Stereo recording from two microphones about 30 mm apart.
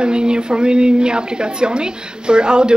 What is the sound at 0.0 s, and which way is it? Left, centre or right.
Speech, right.